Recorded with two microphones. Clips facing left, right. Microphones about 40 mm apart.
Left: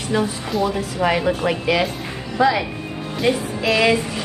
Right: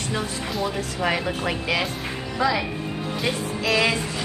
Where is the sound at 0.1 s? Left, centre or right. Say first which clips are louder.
Left 9 dB; centre.